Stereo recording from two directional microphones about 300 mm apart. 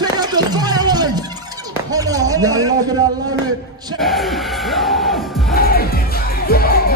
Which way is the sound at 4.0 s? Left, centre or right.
Centre.